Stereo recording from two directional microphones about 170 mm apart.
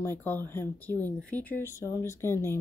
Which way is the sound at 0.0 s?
10° left (ahead or behind).